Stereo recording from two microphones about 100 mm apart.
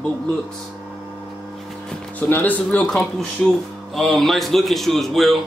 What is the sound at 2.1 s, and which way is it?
Speech, 20° left (ahead or behind).